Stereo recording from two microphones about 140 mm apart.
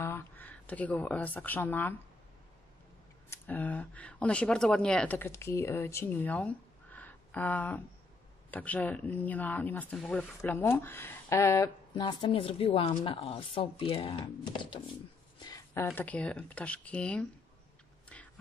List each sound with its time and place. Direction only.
0.0 s speech: 15° left (ahead or behind)
3.3 s speech: 10° left (ahead or behind)
11.9 s speech: 35° left (ahead or behind)
15.3 s a sound: 30° left (ahead or behind)
15.7 s speech: 15° left (ahead or behind)
18.0 s a sound: 10° left (ahead or behind)